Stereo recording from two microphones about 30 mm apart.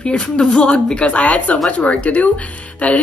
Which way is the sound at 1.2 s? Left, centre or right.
Left.